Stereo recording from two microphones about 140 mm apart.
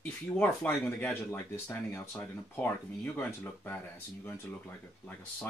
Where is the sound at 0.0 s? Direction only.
10° left (ahead or behind).